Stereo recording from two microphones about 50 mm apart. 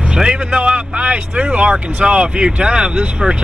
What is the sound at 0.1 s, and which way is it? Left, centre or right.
Speech, centre.